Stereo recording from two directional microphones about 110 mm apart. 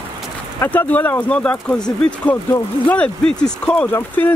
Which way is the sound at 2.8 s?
10° left (ahead or behind).